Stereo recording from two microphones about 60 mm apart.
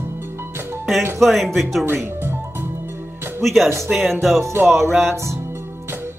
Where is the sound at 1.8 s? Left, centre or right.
Right.